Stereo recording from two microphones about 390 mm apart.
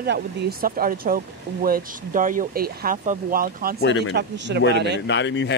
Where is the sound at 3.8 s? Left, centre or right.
Left.